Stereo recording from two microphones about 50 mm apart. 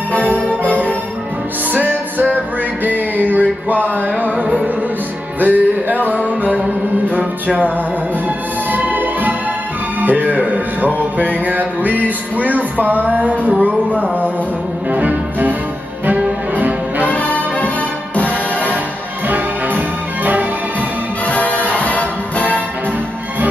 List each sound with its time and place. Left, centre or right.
0.3 s music: left
1.7 s music: right
5.4 s speech: right
7.1 s music: right
8.7 s music: right
11.1 s speech: right
14.9 s music: right
16.5 s music: right
17.1 s music: left
19.2 s music: right
21.3 s music: left